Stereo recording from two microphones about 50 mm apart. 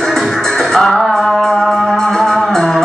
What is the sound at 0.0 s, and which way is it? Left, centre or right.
Music, centre.